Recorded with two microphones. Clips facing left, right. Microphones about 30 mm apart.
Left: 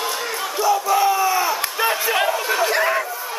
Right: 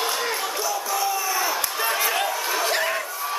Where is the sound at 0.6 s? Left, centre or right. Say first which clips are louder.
Left 11 dB; left.